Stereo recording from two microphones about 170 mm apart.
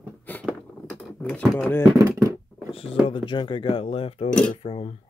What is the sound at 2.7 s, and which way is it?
Speech, 35° left (ahead or behind).